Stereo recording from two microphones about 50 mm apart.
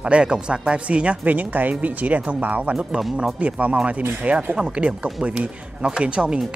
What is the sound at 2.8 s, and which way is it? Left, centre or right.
Speech, centre.